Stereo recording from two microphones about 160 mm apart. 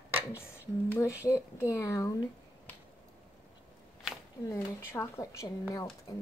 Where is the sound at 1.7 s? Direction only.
20° left (ahead or behind).